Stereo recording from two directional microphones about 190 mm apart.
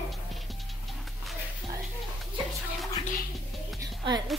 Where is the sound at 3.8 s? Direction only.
20° right (ahead or behind).